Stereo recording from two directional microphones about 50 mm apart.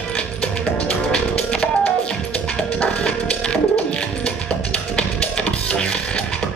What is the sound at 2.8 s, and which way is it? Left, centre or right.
Music, left.